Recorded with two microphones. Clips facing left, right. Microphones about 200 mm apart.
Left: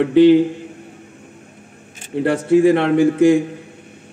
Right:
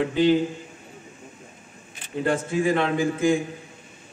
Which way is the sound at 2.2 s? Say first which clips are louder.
Left 10 dB; 70° left (ahead or behind).